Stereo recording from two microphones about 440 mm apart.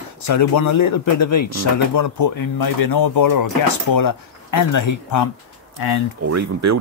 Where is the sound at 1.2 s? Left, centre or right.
Left.